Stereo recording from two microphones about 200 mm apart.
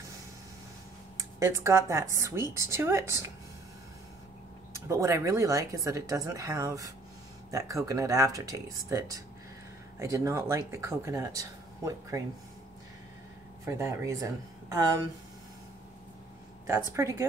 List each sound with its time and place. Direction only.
1.1 s speech: 15° right (ahead or behind)
4.8 s speech: 15° right (ahead or behind)
13.7 s speech: 15° right (ahead or behind)
16.6 s speech: 15° right (ahead or behind)